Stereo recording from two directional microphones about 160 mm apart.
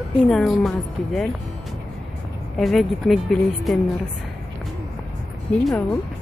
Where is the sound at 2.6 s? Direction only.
Centre (ahead or behind).